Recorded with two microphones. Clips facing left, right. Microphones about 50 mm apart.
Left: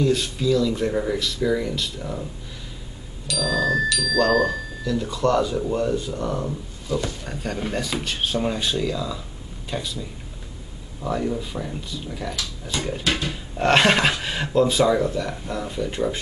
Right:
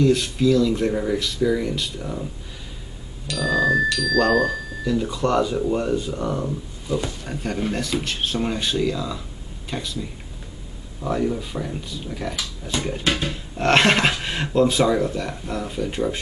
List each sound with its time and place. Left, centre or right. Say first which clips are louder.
0.0 s speech: right 3 dB; centre
3.3 s music: right 2 dB; right
4.1 s speech: even; centre
4.8 s speech: even; centre
13.3 s speech: left 1 dB; centre